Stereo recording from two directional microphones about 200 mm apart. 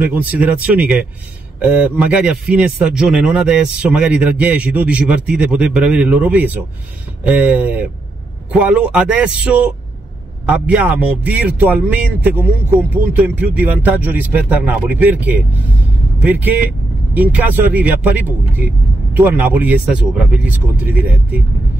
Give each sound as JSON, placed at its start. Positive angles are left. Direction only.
{"t": 0.0, "sound": "a man's voice", "side_deg": -10}
{"t": 19.1, "sound": "a man's voice", "side_deg": -10}